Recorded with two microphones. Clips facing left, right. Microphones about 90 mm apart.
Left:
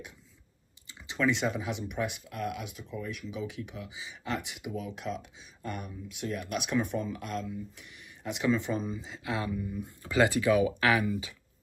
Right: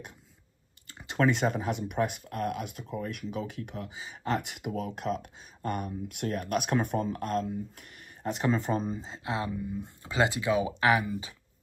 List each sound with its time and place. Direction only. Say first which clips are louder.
0.8 s speech: right 2 dB; 50° right (ahead or behind); by 11.3 s 30° right (ahead or behind)